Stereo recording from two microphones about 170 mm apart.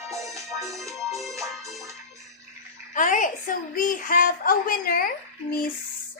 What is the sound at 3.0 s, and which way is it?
A woman's voice, 50° left (ahead or behind).